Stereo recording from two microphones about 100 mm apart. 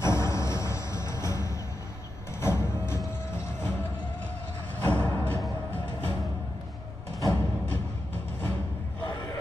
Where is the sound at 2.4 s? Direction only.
25° left (ahead or behind).